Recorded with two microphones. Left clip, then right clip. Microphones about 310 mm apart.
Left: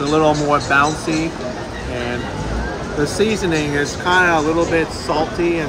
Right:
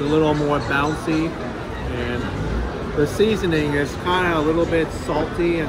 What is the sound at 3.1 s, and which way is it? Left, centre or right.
Speech, centre.